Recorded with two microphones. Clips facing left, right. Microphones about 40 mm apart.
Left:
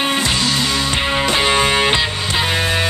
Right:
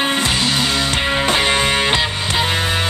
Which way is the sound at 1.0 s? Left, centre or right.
Centre.